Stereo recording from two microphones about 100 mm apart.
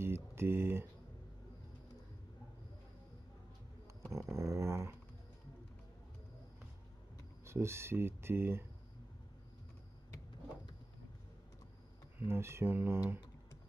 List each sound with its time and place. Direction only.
0.0 s a sound: 25° right (ahead or behind)
4.1 s dog: 30° right (ahead or behind)
7.4 s speech: 25° right (ahead or behind)
12.2 s speech: 25° right (ahead or behind)